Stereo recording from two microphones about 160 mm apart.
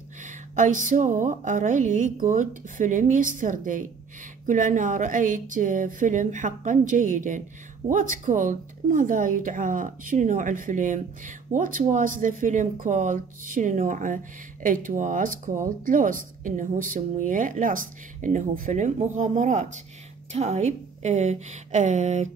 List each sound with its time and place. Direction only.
0.2 s a woman's voice: 50° right (ahead or behind)